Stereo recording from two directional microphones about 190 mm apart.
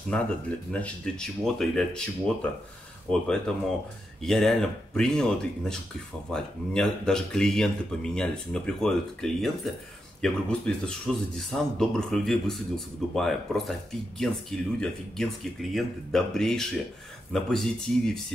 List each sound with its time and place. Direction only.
0.1 s speech: 5° left (ahead or behind)
4.2 s speech: centre (ahead or behind)